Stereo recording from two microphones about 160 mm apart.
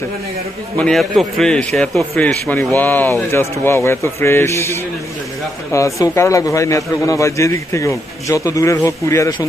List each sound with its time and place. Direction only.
0.7 s a man's voice: 5° left (ahead or behind); by 9.5 s 20° left (ahead or behind)